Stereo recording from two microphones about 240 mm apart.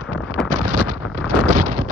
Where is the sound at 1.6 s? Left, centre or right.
Right.